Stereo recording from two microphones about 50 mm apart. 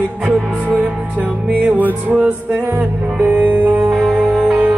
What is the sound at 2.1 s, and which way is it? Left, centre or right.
Speech, right.